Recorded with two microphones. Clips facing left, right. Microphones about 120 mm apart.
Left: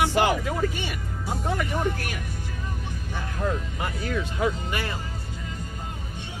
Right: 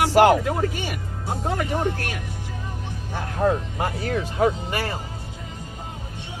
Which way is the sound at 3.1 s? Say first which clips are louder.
Right 7 dB; 40° right (ahead or behind).